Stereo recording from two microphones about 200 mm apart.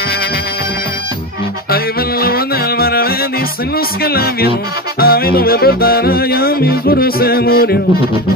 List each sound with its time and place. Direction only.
1.7 s music: 50° left (ahead or behind)